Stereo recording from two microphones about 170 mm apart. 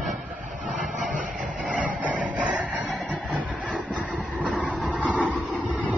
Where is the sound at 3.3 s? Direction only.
5° right (ahead or behind).